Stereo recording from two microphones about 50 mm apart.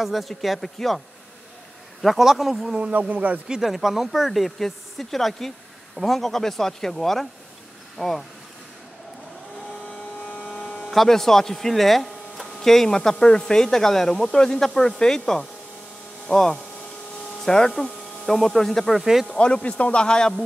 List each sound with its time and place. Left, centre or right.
0.0 s speech: centre
2.8 s speech: right
3.4 s speech: centre
10.3 s mains hum: centre
10.8 s speech: centre
18.9 s speech: centre
19.3 s speech: left